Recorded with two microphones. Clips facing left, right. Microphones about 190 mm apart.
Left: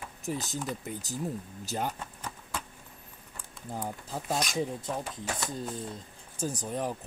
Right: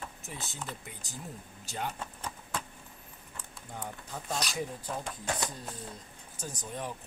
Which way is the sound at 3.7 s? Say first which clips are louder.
Left 5 dB; 35° left (ahead or behind).